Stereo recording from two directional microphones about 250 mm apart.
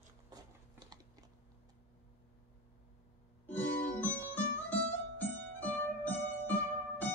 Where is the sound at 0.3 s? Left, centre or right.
Centre.